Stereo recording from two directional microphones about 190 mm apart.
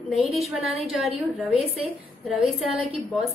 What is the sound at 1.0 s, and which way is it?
Speech, 30° right (ahead or behind).